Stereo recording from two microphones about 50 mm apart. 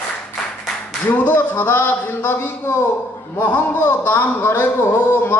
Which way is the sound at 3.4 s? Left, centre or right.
Left.